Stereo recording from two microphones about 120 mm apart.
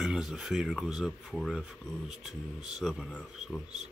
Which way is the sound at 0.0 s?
5° right (ahead or behind).